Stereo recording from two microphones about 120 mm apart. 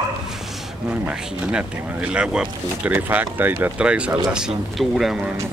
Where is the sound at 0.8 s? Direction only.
10° right (ahead or behind).